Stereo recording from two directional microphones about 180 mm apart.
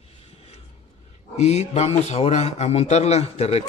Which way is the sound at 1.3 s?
35° left (ahead or behind).